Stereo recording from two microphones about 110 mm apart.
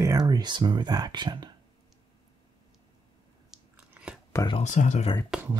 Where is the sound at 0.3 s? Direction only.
40° right (ahead or behind).